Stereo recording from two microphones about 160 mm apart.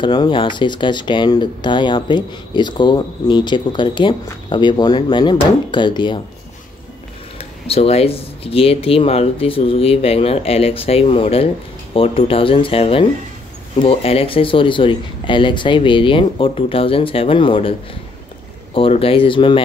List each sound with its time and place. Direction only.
0.0 s speech: 30° left (ahead or behind)
7.3 s speech: 40° left (ahead or behind)